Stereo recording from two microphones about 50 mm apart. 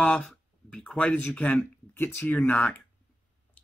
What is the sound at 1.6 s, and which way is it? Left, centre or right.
Speech, left.